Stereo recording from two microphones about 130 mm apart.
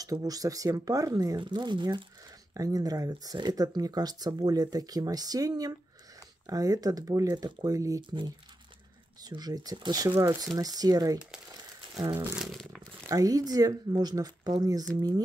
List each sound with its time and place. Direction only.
0.0 s speech: 30° right (ahead or behind)
9.2 s speech: 30° right (ahead or behind)
12.4 s speech: centre (ahead or behind)
13.1 s speech: 30° right (ahead or behind)